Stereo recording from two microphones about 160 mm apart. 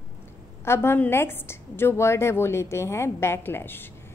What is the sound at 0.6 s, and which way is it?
A woman's voice, 15° left (ahead or behind).